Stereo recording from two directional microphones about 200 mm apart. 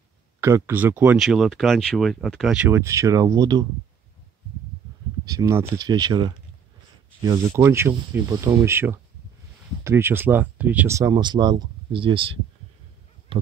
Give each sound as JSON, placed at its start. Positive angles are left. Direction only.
{"t": 0.4, "sound": "speech", "side_deg": -15}
{"t": 5.2, "sound": "speech", "side_deg": -15}